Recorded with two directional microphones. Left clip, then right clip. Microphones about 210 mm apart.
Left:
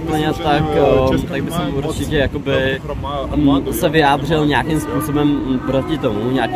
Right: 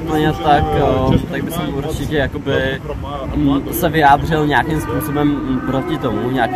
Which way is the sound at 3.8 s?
15° left (ahead or behind).